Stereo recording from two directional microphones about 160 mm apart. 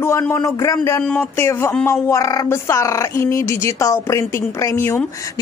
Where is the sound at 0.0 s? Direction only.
15° left (ahead or behind).